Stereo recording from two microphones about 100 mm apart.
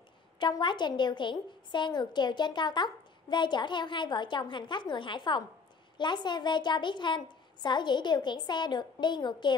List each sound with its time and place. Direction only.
0.4 s a woman's voice: 50° left (ahead or behind)